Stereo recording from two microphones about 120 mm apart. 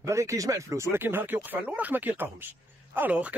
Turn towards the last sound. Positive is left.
turn(degrees=-10)  # may be behind; listen again after turning